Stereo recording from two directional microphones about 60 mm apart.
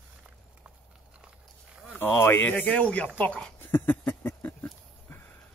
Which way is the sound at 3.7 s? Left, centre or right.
Left.